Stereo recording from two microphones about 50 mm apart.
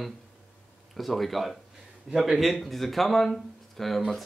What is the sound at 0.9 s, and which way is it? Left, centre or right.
Speech, centre.